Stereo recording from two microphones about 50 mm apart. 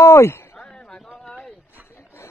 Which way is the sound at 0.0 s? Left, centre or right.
Left.